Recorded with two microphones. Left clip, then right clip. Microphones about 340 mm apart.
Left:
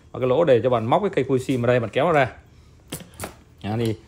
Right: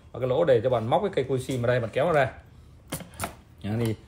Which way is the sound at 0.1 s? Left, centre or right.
Left.